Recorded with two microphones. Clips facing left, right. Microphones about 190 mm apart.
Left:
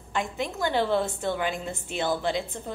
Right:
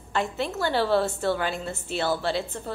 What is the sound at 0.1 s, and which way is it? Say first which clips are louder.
A woman's voice: right 2 dB; 15° left (ahead or behind).